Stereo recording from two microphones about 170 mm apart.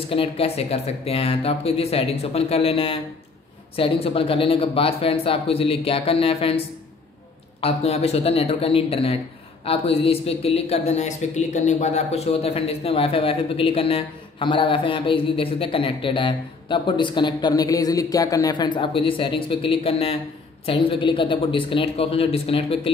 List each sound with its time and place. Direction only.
0.1 s speech: 35° left (ahead or behind)
7.6 s speech: 35° left (ahead or behind)